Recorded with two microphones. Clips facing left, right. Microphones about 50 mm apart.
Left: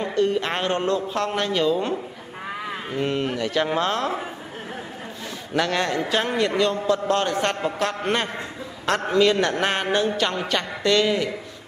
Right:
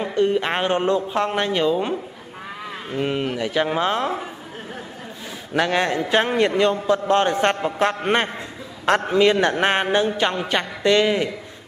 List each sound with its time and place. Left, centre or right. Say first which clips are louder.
0.0 s a woman's voice: right 2 dB; centre
3.0 s speech: right 1 dB; centre
5.6 s a man's voice: right 3 dB; centre